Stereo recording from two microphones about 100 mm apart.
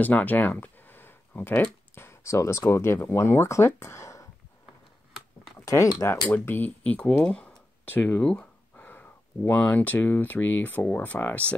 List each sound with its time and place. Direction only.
0.0 s speech: 15° left (ahead or behind)
5.9 s speech: 25° left (ahead or behind)